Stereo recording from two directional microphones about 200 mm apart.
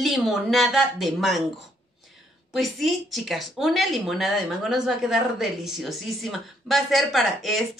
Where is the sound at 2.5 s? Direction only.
Centre (ahead or behind).